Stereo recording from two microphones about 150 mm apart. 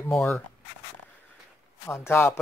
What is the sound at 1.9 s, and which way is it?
Speech, 15° left (ahead or behind).